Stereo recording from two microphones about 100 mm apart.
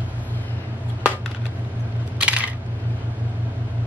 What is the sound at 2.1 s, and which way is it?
Coin, 15° right (ahead or behind).